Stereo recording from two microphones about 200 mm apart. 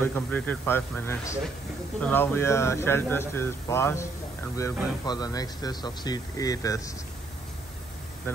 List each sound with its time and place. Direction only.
0.0 s speech: 10° left (ahead or behind)